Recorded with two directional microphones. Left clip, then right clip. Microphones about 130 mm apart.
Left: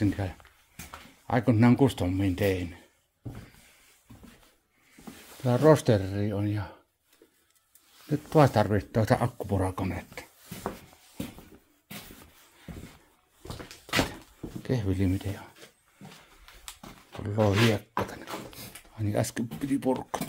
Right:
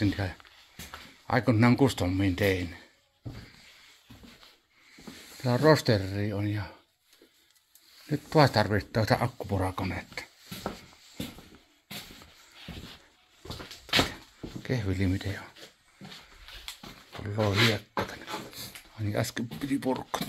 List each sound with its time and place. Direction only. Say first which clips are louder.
0.0 s speech: even; 25° left (ahead or behind)
5.4 s speech: left 2 dB; 25° left (ahead or behind)
8.1 s speech: left 1 dB; 25° left (ahead or behind)
13.9 s cupboard open or close: right 2 dB; 50° left (ahead or behind)
14.6 s speech: left 2 dB; 40° left (ahead or behind)
15.0 s speech: left 1 dB; 25° left (ahead or behind)
17.5 s speech: right 2 dB; 65° left (ahead or behind)
18.2 s speech: right 1 dB; 40° left (ahead or behind)